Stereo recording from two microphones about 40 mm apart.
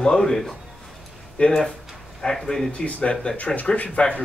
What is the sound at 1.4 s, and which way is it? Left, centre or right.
Speech, left.